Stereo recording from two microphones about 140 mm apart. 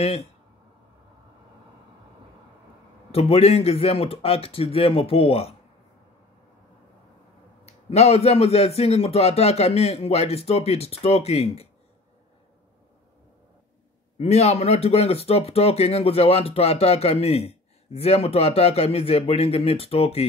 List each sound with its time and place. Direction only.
0.0 s a man's voice: 45° left (ahead or behind)
3.1 s a man's voice: 45° left (ahead or behind)
7.6 s a man's voice: 50° left (ahead or behind)
14.1 s a man's voice: 50° left (ahead or behind)